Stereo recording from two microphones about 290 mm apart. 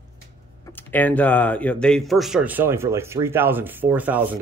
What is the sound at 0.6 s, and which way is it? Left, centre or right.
Speech, centre.